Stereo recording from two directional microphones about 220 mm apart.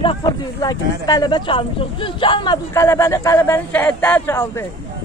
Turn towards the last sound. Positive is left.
turn(degrees=10)  # may be behind; listen again after turning